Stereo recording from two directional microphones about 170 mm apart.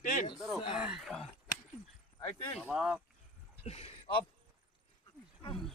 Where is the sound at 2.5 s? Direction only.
5° right (ahead or behind).